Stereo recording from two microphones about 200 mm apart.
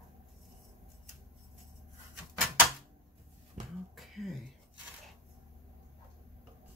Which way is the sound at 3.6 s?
40° right (ahead or behind).